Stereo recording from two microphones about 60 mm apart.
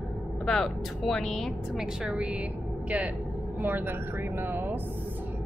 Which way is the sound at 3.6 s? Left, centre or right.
Right.